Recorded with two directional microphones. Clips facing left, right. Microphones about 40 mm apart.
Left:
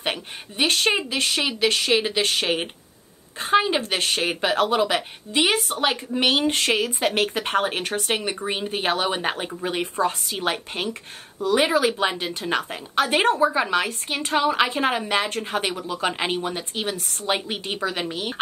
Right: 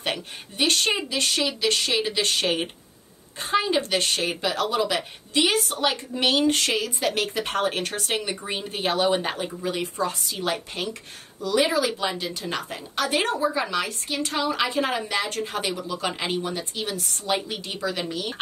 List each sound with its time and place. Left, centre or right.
0.0 s a woman's voice: left